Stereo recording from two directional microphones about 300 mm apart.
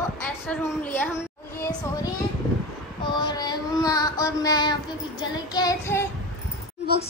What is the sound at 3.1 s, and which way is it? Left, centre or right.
Child singing, centre.